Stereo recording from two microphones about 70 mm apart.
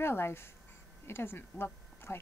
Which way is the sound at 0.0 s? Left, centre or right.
Left.